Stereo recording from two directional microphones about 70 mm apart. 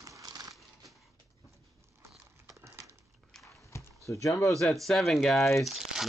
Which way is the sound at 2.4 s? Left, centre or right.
Right.